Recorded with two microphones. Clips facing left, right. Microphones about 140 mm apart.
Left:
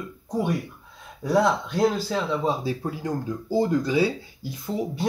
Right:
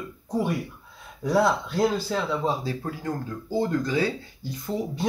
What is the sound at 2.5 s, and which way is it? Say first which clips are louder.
Speech: left 2 dB; 15° left (ahead or behind).